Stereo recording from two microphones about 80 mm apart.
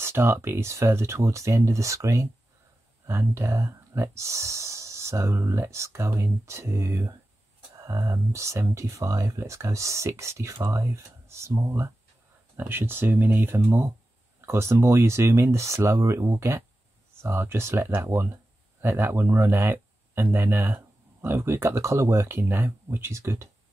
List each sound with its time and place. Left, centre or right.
0.0 s speech: right